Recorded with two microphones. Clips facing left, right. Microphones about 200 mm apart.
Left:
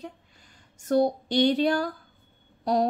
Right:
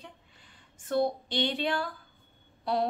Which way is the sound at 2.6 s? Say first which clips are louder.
Left 5 dB; 40° left (ahead or behind).